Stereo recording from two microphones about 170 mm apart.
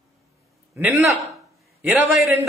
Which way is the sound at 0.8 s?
10° right (ahead or behind).